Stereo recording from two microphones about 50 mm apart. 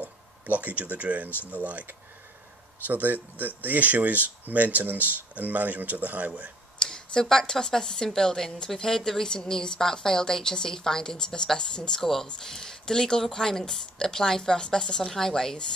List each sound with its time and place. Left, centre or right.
0.0 s speech: right
2.9 s speech: right
6.8 s a woman's voice: centre